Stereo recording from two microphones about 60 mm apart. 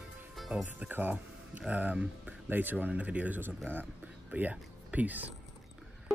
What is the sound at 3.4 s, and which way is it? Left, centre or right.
Speech, right.